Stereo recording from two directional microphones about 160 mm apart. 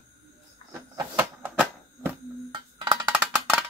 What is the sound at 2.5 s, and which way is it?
Wood block, 25° right (ahead or behind).